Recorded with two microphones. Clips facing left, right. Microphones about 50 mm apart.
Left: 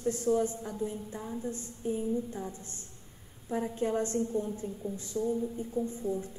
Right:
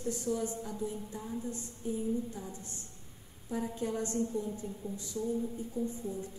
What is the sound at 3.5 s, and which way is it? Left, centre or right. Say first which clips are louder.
A woman's voice: left 4 dB; left.